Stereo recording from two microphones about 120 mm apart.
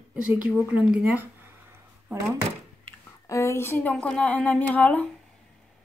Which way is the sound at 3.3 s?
25° left (ahead or behind).